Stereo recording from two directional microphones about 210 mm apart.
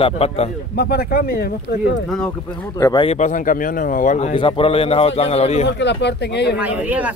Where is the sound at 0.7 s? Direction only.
50° left (ahead or behind).